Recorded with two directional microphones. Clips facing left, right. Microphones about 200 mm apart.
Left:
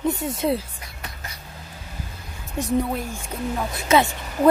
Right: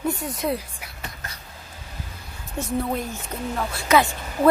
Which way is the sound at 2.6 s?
15° left (ahead or behind).